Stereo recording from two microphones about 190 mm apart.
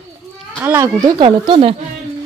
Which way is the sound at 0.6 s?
15° right (ahead or behind).